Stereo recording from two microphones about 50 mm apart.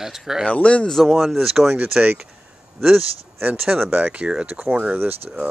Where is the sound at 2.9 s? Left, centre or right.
Right.